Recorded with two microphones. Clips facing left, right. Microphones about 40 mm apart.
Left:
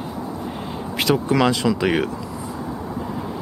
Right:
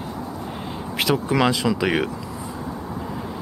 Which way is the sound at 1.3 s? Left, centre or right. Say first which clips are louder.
Left 2 dB; centre.